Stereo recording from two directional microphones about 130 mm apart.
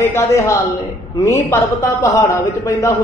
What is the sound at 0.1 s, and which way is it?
A man's voice, 20° left (ahead or behind).